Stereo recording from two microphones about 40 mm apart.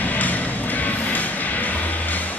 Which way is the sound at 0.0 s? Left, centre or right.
Left.